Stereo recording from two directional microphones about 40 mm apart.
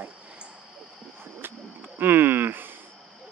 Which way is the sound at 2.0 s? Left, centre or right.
Right.